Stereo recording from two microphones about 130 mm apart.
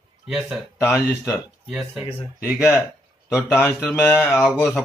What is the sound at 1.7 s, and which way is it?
Speech, 5° right (ahead or behind).